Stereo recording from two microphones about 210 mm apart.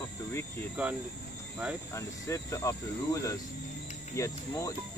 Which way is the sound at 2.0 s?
15° left (ahead or behind).